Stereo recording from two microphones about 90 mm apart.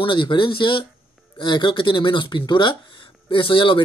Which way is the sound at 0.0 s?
65° left (ahead or behind).